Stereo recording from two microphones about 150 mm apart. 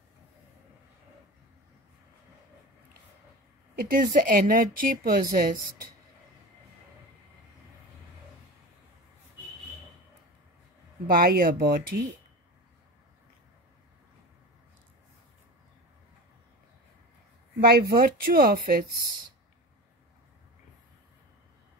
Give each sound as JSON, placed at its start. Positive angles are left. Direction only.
{"t": 3.7, "sound": "speech", "side_deg": -75}
{"t": 11.1, "sound": "speech", "side_deg": -75}
{"t": 17.6, "sound": "speech", "side_deg": -90}